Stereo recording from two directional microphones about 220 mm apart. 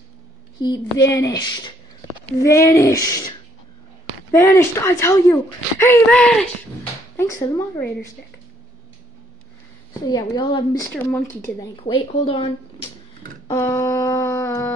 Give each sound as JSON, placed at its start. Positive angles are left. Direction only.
{"t": 0.7, "sound": "speech", "side_deg": 15}
{"t": 10.0, "sound": "speech", "side_deg": 20}
{"t": 10.9, "sound": "speech", "side_deg": 10}
{"t": 11.7, "sound": "speech", "side_deg": 25}
{"t": 13.5, "sound": "speech", "side_deg": 15}